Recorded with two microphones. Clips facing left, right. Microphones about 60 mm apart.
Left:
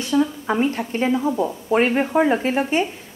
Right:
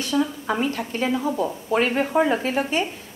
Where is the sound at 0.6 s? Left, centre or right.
Left.